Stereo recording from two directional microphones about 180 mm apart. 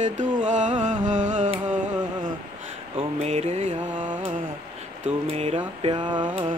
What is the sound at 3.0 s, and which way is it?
Speech, 35° right (ahead or behind).